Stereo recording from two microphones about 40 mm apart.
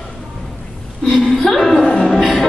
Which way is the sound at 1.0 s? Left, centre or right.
Centre.